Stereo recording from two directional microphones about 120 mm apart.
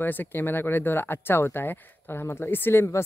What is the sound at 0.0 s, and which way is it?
Speech, 15° left (ahead or behind).